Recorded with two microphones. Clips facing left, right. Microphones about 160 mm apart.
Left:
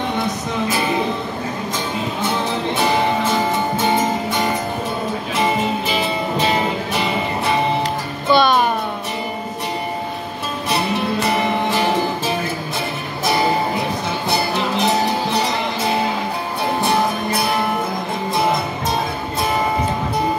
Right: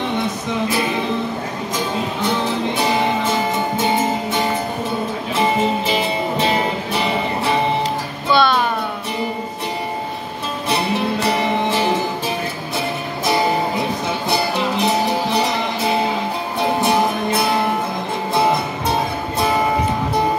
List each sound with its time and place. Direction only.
8.3 s music: 15° left (ahead or behind)